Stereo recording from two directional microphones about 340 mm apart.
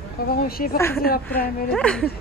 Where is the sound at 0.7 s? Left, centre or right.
Centre.